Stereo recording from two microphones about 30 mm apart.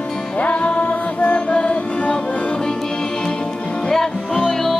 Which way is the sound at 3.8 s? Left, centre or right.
Left.